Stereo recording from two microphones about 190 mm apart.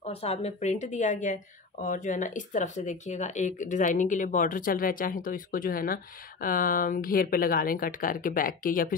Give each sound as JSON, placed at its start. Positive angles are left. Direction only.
{"t": 0.0, "sound": "a woman's voice", "side_deg": 35}